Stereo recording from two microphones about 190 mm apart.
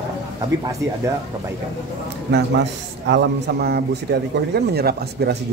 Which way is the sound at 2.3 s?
65° right (ahead or behind).